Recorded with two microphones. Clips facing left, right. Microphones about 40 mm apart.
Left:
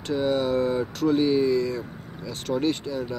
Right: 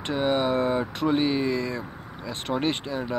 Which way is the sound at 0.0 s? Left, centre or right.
Right.